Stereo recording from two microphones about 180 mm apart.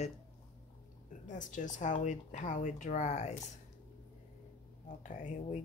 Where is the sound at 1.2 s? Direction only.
45° left (ahead or behind).